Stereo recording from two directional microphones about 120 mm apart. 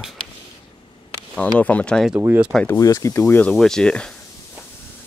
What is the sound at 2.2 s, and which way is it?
Speech, 20° right (ahead or behind).